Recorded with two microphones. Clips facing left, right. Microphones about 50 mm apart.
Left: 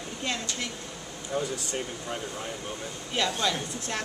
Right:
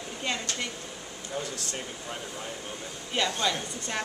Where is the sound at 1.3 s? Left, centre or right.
Centre.